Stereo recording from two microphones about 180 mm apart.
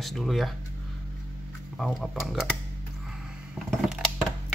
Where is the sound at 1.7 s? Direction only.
Centre (ahead or behind).